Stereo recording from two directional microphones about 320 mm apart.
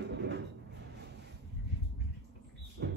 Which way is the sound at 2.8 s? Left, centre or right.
Right.